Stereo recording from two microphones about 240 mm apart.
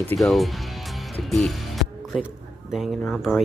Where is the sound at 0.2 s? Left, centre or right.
Centre.